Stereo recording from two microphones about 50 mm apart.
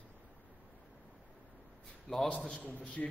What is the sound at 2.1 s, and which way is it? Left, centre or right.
Speech, centre.